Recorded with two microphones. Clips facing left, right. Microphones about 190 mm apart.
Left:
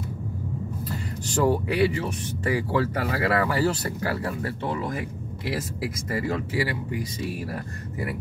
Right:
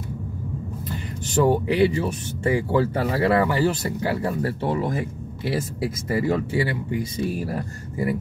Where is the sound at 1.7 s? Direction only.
25° right (ahead or behind).